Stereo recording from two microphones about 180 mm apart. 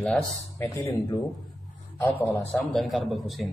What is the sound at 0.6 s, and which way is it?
A man's voice, 15° left (ahead or behind).